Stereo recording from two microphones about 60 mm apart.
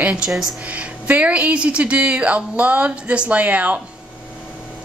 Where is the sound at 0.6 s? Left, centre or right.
Right.